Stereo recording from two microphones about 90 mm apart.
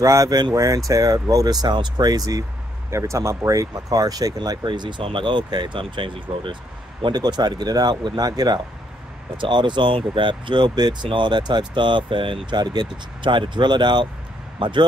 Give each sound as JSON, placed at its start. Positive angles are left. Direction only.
{"t": 0.0, "sound": "speech", "side_deg": -40}
{"t": 2.9, "sound": "speech", "side_deg": -35}
{"t": 9.4, "sound": "speech", "side_deg": -60}